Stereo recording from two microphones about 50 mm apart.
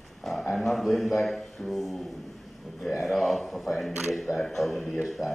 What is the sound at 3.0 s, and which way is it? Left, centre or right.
A man's voice, centre.